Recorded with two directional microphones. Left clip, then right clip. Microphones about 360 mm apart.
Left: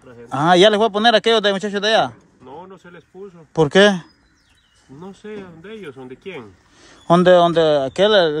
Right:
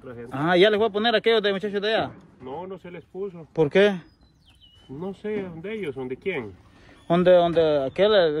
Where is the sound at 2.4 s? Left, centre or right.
Centre.